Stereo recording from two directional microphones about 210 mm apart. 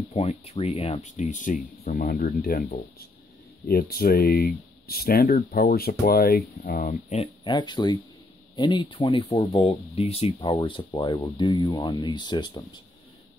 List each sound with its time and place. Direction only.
0.1 s speech: 30° left (ahead or behind)
7.4 s speech: 20° left (ahead or behind)